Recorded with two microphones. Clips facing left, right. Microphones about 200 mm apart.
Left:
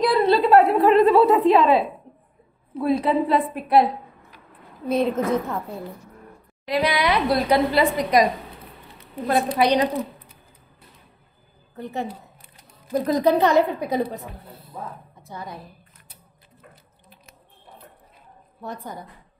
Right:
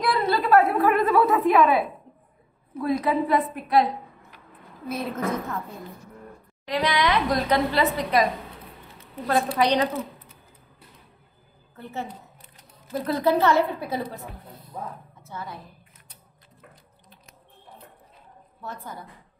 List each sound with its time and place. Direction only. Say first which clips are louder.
0.1 s a sound: left 2 dB; 30° left (ahead or behind)
1.4 s a woman's voice: left 3 dB; 30° left (ahead or behind)
4.9 s a woman's voice: left 9 dB; 25° left (ahead or behind)
6.6 s a woman's voice: left 2 dB; 10° left (ahead or behind)
11.7 s a sound: left 5 dB; 15° left (ahead or behind)
13.1 s a woman's voice: left 3 dB; 15° left (ahead or behind)
14.5 s speech: even; 5° left (ahead or behind)
15.2 s a sound: left 1 dB; 15° left (ahead or behind)
18.6 s a woman's voice: left 4 dB; 15° left (ahead or behind)